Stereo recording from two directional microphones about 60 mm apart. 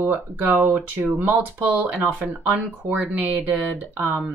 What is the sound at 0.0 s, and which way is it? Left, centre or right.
Speech, right.